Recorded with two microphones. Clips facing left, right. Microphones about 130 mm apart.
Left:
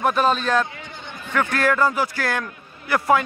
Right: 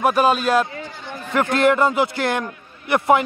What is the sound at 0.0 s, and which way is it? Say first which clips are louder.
Speech: right 3 dB; 10° right (ahead or behind).